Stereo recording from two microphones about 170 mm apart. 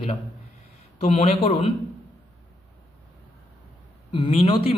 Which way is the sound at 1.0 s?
40° left (ahead or behind).